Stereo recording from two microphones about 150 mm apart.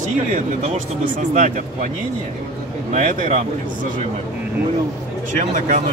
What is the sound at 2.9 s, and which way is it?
Speech, 55° right (ahead or behind).